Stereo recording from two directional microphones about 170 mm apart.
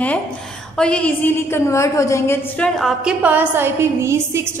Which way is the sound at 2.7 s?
Centre (ahead or behind).